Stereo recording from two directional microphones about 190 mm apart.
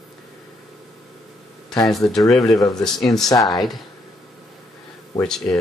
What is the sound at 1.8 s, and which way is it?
Speech, centre (ahead or behind).